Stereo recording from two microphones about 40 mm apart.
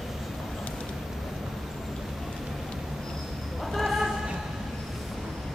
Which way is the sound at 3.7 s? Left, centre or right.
Centre.